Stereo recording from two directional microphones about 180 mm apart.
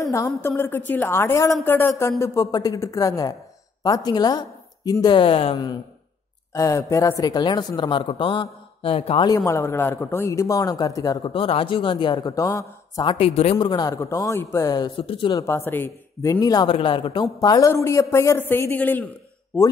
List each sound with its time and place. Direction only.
0.0 s a woman's voice: 15° left (ahead or behind); by 9.3 s 35° left (ahead or behind)
9.3 s speech: 15° left (ahead or behind)
13.2 s speech: 35° left (ahead or behind)
13.7 s speech: 20° left (ahead or behind)
15.3 s a woman's voice: 15° left (ahead or behind)